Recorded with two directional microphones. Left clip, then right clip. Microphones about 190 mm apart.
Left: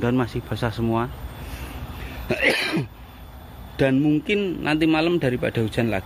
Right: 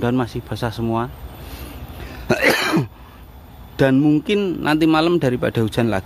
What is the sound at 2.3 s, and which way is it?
Cough, 45° right (ahead or behind).